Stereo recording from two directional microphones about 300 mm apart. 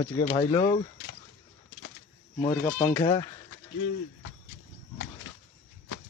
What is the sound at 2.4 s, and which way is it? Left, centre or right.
Speech, centre.